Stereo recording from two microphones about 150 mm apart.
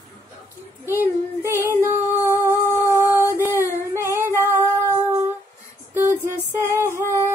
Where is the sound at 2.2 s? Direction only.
20° right (ahead or behind).